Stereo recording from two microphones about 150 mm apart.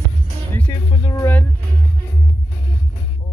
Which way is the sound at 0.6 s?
15° left (ahead or behind).